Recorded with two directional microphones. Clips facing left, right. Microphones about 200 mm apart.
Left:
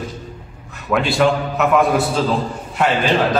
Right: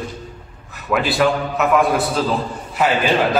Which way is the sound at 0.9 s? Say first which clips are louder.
Left 1 dB; centre (ahead or behind).